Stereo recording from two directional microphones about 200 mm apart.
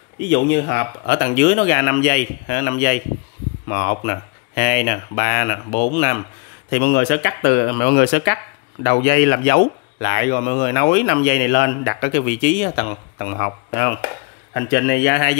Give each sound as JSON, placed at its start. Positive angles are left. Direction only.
{"t": 0.3, "sound": "speech", "side_deg": 55}
{"t": 6.7, "sound": "speech", "side_deg": 55}